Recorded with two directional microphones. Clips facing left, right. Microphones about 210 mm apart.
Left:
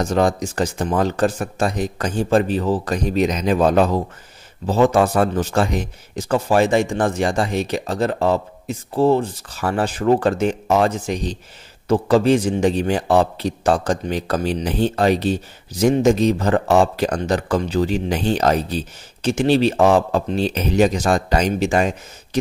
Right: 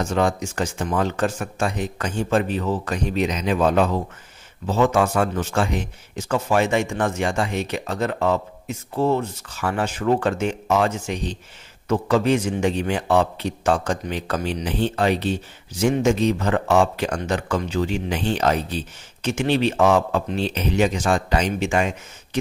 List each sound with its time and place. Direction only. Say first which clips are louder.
0.0 s a man's voice: left 3 dB; 35° left (ahead or behind)